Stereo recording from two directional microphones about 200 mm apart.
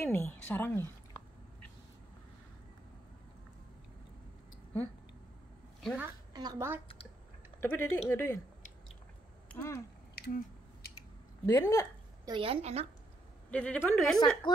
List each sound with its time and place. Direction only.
0.0 s speech: 10° left (ahead or behind)
5.8 s a sound: centre (ahead or behind)
6.3 s a woman's voice: 15° right (ahead or behind)
7.6 s speech: 10° left (ahead or behind)
9.5 s speech: 10° left (ahead or behind)
11.0 s a sound: 15° left (ahead or behind)
12.3 s a woman's voice: 25° right (ahead or behind)
13.5 s a woman's voice: 5° left (ahead or behind)